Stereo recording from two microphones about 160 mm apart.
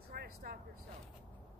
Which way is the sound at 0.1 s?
65° right (ahead or behind).